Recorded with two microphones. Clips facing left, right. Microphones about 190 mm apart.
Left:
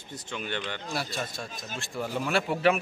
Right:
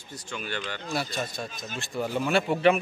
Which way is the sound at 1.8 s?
Centre (ahead or behind).